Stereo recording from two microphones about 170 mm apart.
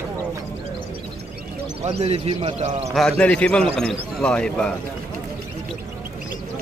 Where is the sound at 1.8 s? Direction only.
35° right (ahead or behind).